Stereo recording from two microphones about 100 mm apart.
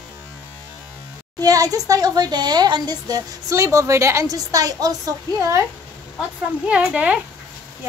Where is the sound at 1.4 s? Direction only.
35° right (ahead or behind).